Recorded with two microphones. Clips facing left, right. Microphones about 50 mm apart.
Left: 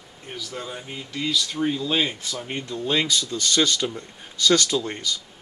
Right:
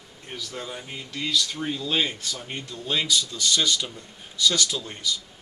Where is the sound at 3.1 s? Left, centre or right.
Left.